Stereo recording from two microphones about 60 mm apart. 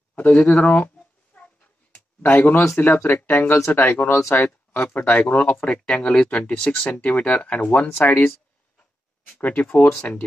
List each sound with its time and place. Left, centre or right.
0.1 s a sound: left
2.2 s speech: left
4.1 s speech: left
4.4 s a sound: left
4.9 s speech: left
8.0 s speech: left
9.5 s speech: centre